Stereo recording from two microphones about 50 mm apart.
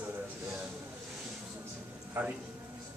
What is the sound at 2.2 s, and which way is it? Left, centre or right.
Speech, right.